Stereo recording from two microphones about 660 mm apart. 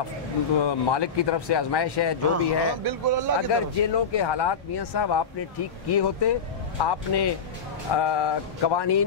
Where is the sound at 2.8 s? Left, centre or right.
Right.